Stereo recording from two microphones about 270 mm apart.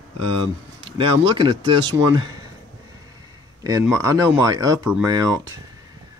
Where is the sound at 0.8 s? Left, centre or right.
Centre.